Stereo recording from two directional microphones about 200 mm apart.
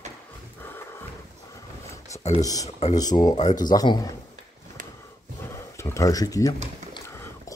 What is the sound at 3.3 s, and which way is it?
Speech, 35° left (ahead or behind).